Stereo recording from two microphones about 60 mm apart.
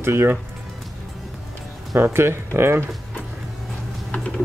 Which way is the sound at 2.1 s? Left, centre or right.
Right.